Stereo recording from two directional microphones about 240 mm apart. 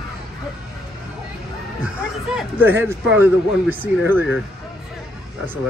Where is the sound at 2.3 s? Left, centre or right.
Centre.